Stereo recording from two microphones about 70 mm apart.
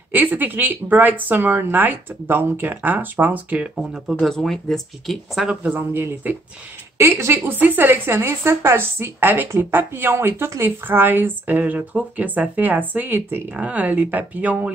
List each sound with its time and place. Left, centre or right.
0.1 s a woman's voice: right
4.2 s speech: centre
5.4 s a woman's voice: centre
7.0 s speech: right
7.5 s a woman's voice: right